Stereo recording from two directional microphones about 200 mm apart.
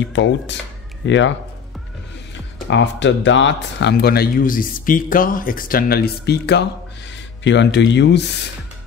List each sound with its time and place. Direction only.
0.1 s speech: 65° left (ahead or behind)
2.7 s speech: 65° left (ahead or behind)